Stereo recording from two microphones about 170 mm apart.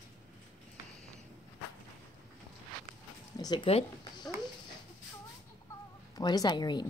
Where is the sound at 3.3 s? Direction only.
25° left (ahead or behind).